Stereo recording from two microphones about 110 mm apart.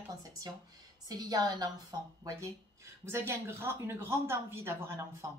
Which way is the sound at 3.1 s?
25° right (ahead or behind).